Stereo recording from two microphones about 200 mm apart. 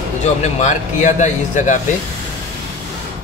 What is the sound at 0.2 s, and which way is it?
Speech, 35° left (ahead or behind).